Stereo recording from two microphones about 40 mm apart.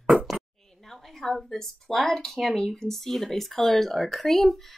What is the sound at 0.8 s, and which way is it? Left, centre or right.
A woman's voice, centre.